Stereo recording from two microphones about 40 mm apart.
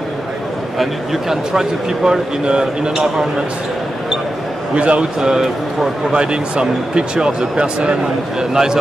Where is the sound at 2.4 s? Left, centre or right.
Right.